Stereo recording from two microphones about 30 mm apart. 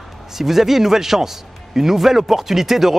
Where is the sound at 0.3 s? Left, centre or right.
Centre.